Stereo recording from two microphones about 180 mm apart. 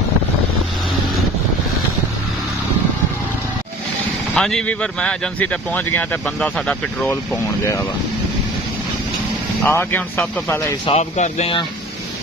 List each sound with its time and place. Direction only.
4.3 s speech: 5° left (ahead or behind)
9.7 s speech: 10° left (ahead or behind)
10.9 s speech: 35° left (ahead or behind)